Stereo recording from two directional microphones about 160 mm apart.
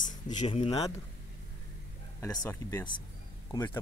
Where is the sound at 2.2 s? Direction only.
20° left (ahead or behind).